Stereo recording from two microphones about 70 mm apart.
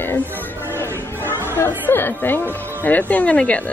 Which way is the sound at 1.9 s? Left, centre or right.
Left.